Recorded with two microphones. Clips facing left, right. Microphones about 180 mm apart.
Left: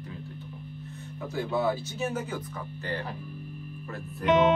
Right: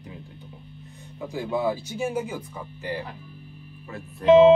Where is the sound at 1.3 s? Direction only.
15° right (ahead or behind).